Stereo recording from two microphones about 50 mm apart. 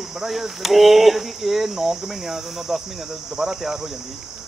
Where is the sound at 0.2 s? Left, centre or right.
Centre.